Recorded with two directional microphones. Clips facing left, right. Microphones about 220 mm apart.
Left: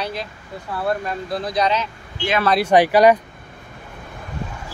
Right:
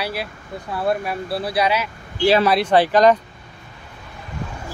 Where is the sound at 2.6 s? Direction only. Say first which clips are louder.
Left 5 dB; 10° left (ahead or behind).